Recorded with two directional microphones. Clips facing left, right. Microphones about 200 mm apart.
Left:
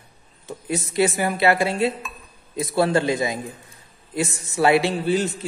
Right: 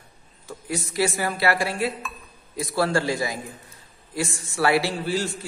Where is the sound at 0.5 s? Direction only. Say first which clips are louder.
Left 3 dB; 20° left (ahead or behind).